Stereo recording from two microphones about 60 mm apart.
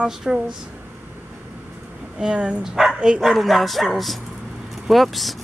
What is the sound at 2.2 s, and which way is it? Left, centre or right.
Speech, centre.